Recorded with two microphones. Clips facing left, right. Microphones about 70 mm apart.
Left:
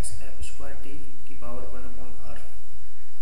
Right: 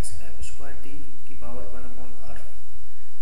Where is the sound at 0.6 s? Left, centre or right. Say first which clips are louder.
Left 1 dB; centre.